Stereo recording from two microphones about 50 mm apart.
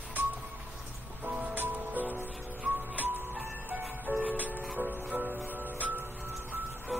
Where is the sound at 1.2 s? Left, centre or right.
Right.